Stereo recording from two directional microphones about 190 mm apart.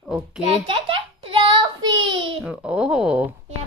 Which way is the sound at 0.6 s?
30° right (ahead or behind).